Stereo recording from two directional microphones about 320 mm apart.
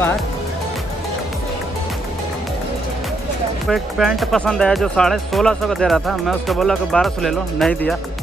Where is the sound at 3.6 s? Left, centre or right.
Centre.